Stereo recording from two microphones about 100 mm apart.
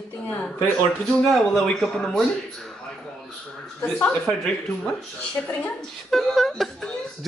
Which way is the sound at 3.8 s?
15° left (ahead or behind).